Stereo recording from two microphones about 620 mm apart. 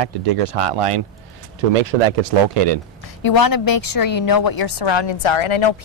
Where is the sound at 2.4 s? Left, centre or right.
Right.